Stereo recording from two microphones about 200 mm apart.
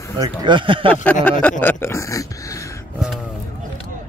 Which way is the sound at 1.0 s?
10° left (ahead or behind).